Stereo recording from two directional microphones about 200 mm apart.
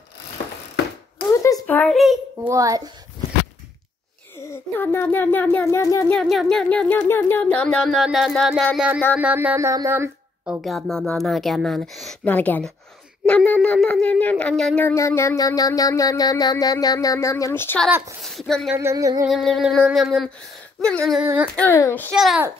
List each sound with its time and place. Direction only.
1.4 s a sound: 10° left (ahead or behind)
2.5 s speech: 15° right (ahead or behind)
4.5 s speech: 10° left (ahead or behind)
6.1 s speech: centre (ahead or behind)
10.6 s speech: centre (ahead or behind)
18.8 s speech: 15° right (ahead or behind)
19.3 s speech: centre (ahead or behind)
21.2 s speech: 5° right (ahead or behind)
21.5 s speech: 15° left (ahead or behind)
22.1 s speech: centre (ahead or behind)